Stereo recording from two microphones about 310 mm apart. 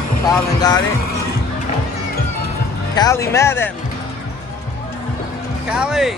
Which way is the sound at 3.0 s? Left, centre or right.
Centre.